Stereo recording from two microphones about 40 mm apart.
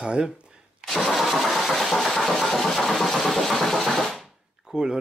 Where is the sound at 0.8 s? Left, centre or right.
Centre.